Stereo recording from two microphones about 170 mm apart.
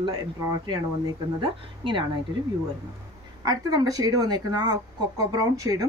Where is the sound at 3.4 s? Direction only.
25° right (ahead or behind).